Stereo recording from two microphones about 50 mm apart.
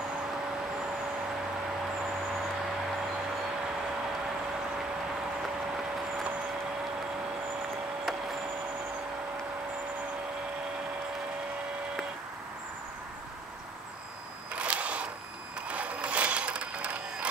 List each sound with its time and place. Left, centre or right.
14.5 s camera: right
15.7 s sewing machine: right